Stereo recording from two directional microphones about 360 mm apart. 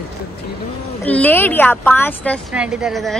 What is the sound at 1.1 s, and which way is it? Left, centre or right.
A woman's voice, centre.